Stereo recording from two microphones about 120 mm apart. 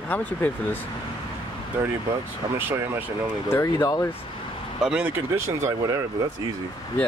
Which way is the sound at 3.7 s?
35° left (ahead or behind).